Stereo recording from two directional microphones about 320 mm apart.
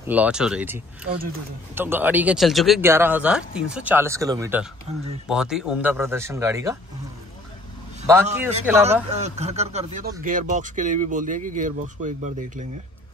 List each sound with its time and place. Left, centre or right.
0.0 s speech: centre
1.8 s a man's voice: centre
8.1 s a man's voice: centre
9.1 s speech: right